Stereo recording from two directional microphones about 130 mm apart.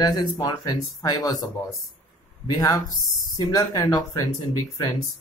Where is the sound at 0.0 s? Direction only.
30° left (ahead or behind).